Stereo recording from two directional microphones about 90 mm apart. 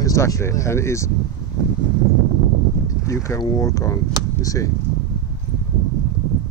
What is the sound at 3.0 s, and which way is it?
Speech, 35° left (ahead or behind).